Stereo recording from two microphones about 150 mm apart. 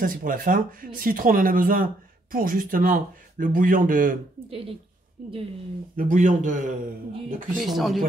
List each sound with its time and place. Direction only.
0.0 s speech: 65° right (ahead or behind)
4.5 s a woman's voice: 40° right (ahead or behind)
5.9 s speech: 60° right (ahead or behind)
7.4 s speech: centre (ahead or behind)